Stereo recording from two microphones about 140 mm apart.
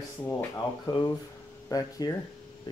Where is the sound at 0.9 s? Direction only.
30° left (ahead or behind).